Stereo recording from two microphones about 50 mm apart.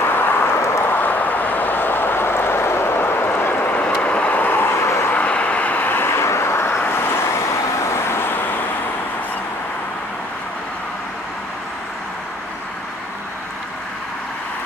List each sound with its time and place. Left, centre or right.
0.0 s vehicle: left
0.5 s a sound: left
0.9 s vehicle: left
3.7 s vehicle: left
4.8 s vehicle: left
5.1 s vehicle: left
6.0 s vehicle: left